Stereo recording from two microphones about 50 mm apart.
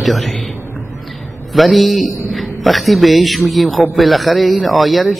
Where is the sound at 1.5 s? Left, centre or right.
Centre.